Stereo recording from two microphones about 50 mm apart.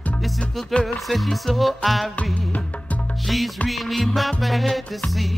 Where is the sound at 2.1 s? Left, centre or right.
Left.